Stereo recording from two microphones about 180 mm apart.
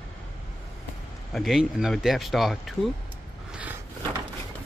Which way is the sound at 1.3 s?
Centre (ahead or behind).